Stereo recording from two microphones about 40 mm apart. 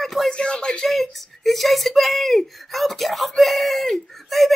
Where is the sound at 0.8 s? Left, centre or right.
Centre.